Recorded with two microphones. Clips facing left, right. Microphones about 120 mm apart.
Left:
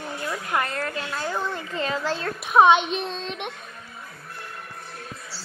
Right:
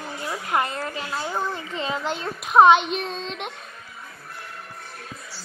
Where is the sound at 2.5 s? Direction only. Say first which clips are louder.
Right 2 dB; centre (ahead or behind).